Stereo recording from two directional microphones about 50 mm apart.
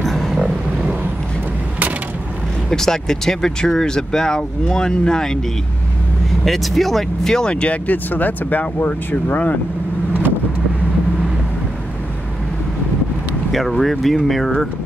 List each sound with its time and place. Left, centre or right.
0.0 s vehicle: centre
2.7 s speech: centre
6.4 s speech: centre
7.6 s speech: left
13.5 s speech: centre